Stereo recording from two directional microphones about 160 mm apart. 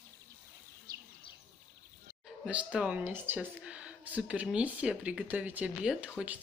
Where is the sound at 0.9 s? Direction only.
20° right (ahead or behind).